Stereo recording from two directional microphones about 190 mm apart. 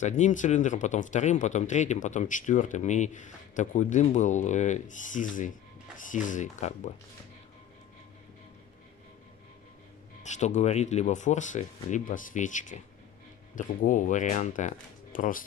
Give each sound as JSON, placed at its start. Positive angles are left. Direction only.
{"t": 0.0, "sound": "speech", "side_deg": 40}
{"t": 10.2, "sound": "speech", "side_deg": 40}